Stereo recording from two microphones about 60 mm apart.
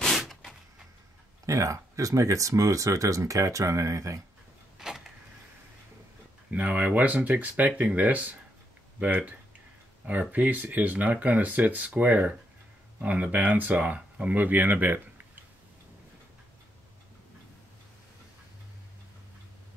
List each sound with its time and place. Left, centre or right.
1.4 s speech: right
4.7 s a sound: centre
6.5 s speech: right